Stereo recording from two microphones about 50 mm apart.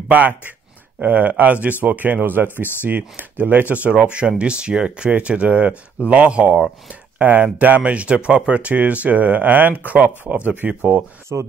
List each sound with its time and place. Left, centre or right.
0.1 s speech: right
11.3 s speech: right